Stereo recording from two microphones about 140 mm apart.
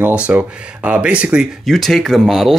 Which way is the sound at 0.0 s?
10° right (ahead or behind).